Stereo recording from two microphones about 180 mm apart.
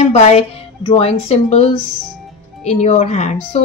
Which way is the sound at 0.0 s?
35° left (ahead or behind).